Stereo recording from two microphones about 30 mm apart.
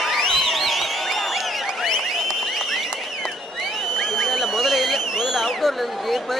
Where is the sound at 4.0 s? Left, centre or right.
Centre.